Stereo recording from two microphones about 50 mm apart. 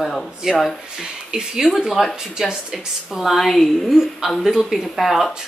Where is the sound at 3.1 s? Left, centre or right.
Centre.